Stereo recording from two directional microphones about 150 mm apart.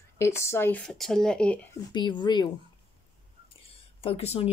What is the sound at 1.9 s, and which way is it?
Speech, 30° left (ahead or behind).